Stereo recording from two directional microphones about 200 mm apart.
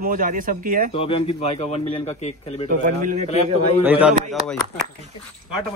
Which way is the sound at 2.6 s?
40° right (ahead or behind).